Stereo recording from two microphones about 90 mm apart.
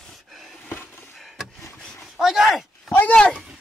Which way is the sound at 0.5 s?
20° left (ahead or behind).